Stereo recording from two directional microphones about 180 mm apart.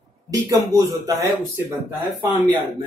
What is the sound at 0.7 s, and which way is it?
Speech, 20° right (ahead or behind).